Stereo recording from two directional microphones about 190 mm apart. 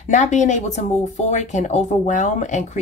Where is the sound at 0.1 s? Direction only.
40° left (ahead or behind).